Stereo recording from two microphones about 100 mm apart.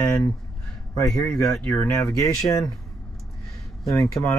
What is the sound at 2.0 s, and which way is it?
Speech, 35° left (ahead or behind).